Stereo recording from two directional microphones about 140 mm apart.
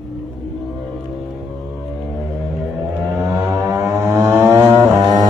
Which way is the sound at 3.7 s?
15° right (ahead or behind).